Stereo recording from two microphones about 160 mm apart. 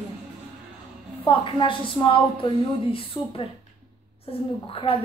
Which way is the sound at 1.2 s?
35° left (ahead or behind).